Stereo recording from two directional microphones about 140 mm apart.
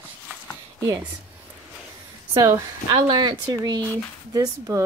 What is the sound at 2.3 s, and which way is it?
Speech, 25° right (ahead or behind).